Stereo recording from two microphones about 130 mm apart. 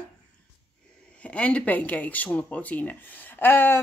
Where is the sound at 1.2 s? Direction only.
10° left (ahead or behind).